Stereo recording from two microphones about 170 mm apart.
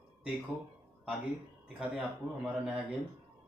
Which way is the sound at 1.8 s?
5° right (ahead or behind).